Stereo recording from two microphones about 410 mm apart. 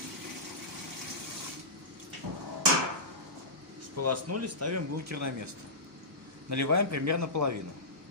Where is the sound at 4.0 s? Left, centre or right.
Right.